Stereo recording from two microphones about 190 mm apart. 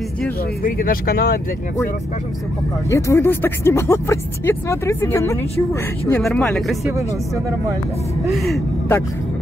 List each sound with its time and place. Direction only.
0.7 s speech: 45° left (ahead or behind)
2.9 s speech: 15° left (ahead or behind)
6.2 s speech: 5° left (ahead or behind)
8.3 s speech: centre (ahead or behind)